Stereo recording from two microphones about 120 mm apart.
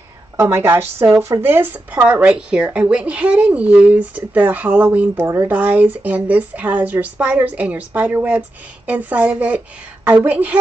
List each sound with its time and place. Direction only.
0.4 s a woman's voice: 20° right (ahead or behind)